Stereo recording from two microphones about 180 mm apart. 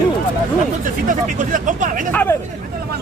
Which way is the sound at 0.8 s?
45° right (ahead or behind).